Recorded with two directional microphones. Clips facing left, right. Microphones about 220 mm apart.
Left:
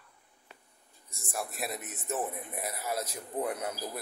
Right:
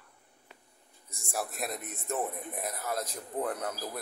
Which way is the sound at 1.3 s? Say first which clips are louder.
Right 1 dB; centre (ahead or behind).